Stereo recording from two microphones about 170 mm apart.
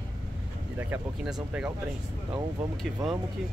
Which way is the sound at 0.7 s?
5° right (ahead or behind).